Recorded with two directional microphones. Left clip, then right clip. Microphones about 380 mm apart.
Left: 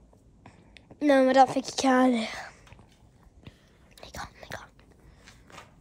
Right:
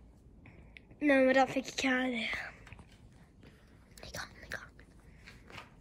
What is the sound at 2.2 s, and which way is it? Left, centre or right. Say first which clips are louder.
Speech: left 3 dB; centre.